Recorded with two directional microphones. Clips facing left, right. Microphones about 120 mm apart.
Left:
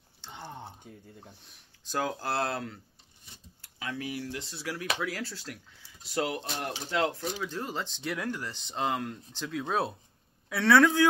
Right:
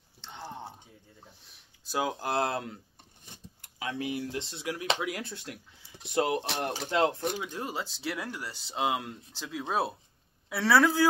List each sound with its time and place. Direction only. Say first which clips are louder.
0.4 s a sound: right 2 dB; centre (ahead or behind)
1.4 s speech: left 1 dB; centre (ahead or behind)
2.0 s a man's voice: right 1 dB; 15° right (ahead or behind)